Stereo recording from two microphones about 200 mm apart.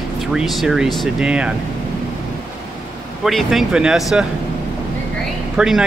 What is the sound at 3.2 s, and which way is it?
Speech, centre (ahead or behind).